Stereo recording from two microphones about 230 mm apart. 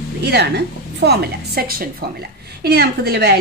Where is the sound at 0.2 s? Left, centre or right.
Right.